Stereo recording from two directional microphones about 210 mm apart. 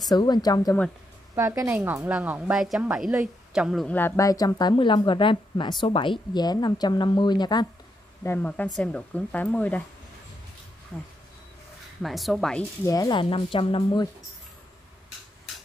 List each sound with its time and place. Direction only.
0.1 s speech: 20° left (ahead or behind)
1.3 s a woman's voice: 15° right (ahead or behind); by 7.6 s 20° left (ahead or behind)
8.2 s speech: 10° left (ahead or behind)
12.0 s a woman's voice: centre (ahead or behind)
12.8 s speech: 15° left (ahead or behind)